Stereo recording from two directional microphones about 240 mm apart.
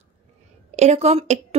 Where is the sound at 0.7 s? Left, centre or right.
Right.